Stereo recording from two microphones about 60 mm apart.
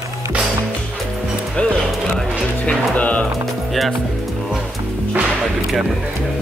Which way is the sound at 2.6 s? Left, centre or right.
Left.